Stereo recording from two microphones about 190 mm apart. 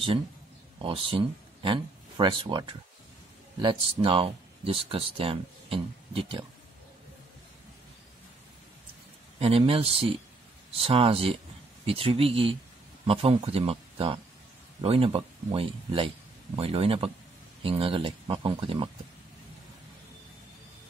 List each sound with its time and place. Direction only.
0.7 s speech: 25° right (ahead or behind)
9.4 s speech: 30° right (ahead or behind)